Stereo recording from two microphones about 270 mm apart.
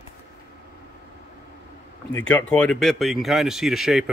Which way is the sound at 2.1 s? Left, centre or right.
Centre.